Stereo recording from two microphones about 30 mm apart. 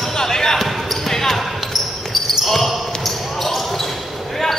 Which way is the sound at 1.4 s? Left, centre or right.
Centre.